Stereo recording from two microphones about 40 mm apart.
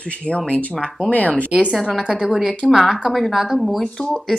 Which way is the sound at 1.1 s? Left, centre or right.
Left.